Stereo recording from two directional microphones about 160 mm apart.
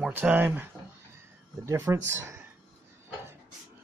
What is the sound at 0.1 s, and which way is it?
Speech, 10° right (ahead or behind).